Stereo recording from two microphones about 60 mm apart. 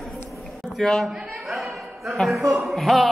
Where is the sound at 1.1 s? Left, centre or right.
Centre.